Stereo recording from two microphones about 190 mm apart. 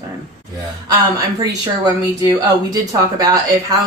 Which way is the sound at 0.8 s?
20° right (ahead or behind).